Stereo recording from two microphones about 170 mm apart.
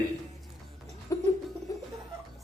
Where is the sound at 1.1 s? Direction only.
20° left (ahead or behind).